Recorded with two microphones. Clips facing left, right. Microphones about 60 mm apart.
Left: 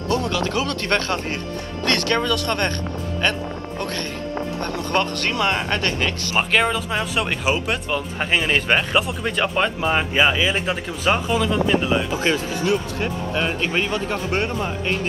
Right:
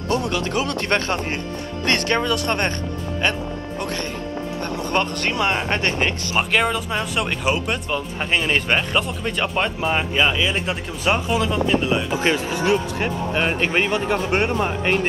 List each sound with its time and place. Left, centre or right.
0.1 s speech: right
3.8 s speech: right
6.5 s speech: centre
12.1 s speech: right